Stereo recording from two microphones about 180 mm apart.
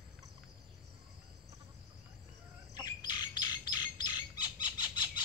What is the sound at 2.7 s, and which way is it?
Bird, 20° left (ahead or behind).